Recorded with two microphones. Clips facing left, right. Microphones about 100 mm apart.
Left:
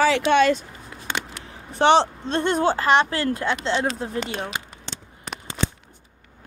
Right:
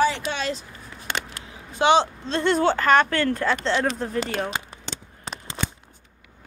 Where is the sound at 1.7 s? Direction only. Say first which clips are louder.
Left 2 dB; 50° left (ahead or behind).